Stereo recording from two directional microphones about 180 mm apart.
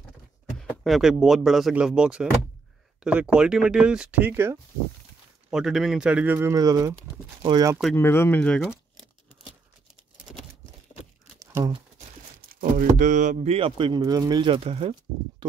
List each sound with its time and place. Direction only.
0.6 s speech: centre (ahead or behind)
5.5 s speech: 5° right (ahead or behind); by 7.7 s 20° right (ahead or behind)
7.9 s a sound: 15° left (ahead or behind)
11.5 s speech: 25° right (ahead or behind)
12.4 s speech: 50° right (ahead or behind); by 15.0 s 30° right (ahead or behind)